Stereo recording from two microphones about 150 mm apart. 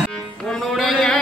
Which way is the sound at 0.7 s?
Centre (ahead or behind).